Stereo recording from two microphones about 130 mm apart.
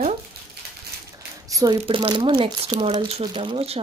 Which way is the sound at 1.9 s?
40° right (ahead or behind).